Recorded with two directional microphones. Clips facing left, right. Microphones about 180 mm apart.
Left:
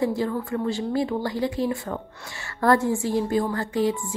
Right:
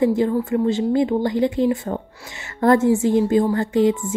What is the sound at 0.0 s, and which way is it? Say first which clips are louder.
A woman's voice: right 6 dB; 20° right (ahead or behind).